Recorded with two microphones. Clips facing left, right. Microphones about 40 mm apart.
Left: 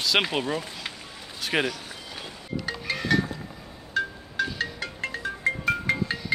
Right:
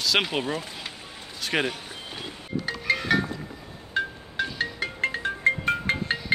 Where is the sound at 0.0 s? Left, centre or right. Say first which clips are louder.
Even; centre.